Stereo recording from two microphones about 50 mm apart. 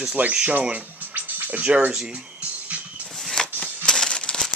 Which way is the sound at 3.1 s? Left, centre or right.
Centre.